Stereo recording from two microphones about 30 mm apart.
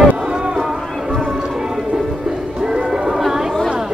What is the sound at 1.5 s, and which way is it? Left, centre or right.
Music, centre.